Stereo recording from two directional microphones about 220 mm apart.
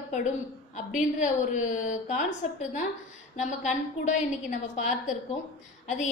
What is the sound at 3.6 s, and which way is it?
A woman's voice, 35° left (ahead or behind).